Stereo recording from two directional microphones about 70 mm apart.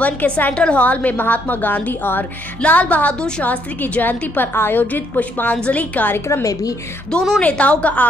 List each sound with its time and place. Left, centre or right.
0.0 s a woman's voice: left
3.4 s a woman's voice: left
7.1 s a woman's voice: centre